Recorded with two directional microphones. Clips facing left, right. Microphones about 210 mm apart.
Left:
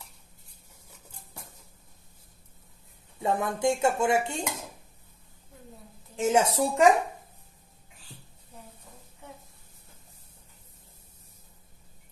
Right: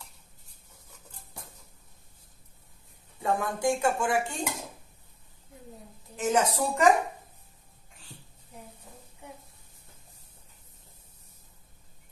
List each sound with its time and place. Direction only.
3.2 s dishes: 20° left (ahead or behind)
6.1 s dishes: 25° left (ahead or behind)